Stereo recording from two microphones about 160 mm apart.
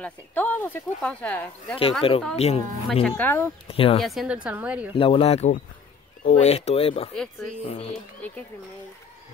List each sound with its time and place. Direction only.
0.0 s speech: 10° left (ahead or behind)
1.8 s speech: 35° left (ahead or behind)
3.0 s speech: 10° left (ahead or behind)
3.6 s speech: 35° left (ahead or behind)
4.0 s a woman's voice: centre (ahead or behind)
4.9 s speech: 35° left (ahead or behind)
7.9 s speech: 10° left (ahead or behind)